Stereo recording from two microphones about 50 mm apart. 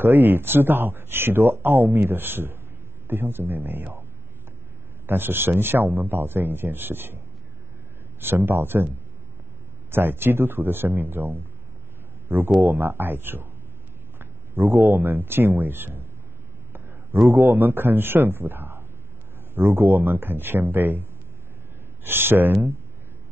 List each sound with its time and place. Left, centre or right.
0.0 s speech: right
5.0 s speech: right
8.2 s speech: right
12.5 s speech: right